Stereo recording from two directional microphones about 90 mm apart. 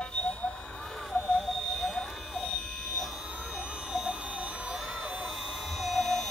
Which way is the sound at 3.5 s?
10° right (ahead or behind).